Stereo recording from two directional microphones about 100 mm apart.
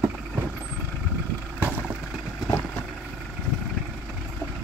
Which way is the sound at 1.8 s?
5° right (ahead or behind).